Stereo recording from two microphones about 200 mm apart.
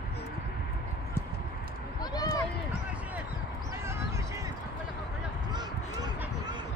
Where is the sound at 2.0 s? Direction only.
20° left (ahead or behind).